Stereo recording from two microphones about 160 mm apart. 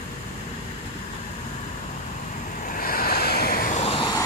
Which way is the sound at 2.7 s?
65° left (ahead or behind).